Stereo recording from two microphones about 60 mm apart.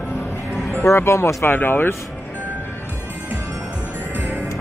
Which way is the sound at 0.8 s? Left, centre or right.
Left.